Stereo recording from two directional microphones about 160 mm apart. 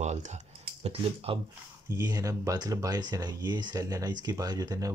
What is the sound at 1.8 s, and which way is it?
Speech, 20° right (ahead or behind).